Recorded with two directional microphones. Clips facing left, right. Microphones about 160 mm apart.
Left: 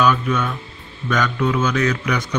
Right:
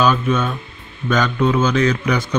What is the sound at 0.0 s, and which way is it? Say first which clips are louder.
Speech: right 1 dB; 30° right (ahead or behind).